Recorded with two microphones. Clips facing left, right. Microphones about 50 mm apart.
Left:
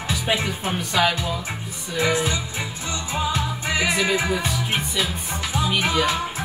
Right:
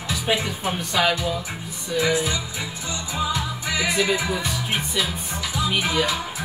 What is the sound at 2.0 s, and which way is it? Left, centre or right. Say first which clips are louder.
Music: left 1 dB; left.